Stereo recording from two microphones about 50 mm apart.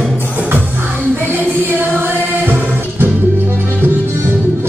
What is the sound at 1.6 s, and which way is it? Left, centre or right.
Music, right.